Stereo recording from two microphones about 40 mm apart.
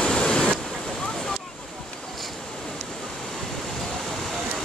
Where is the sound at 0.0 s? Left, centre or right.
Left.